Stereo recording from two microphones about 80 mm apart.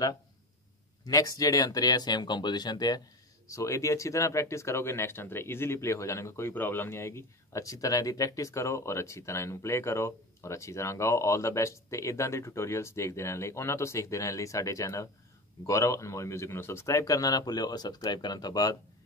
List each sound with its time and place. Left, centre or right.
1.0 s speech: left
3.4 s speech: left